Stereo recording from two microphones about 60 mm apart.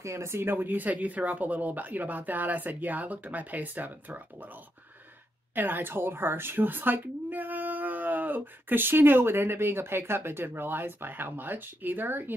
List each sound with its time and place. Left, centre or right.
0.0 s speech: right
0.6 s speech: right
5.5 s speech: right